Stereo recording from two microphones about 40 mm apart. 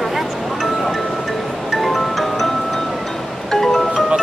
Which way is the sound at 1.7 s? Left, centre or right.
Centre.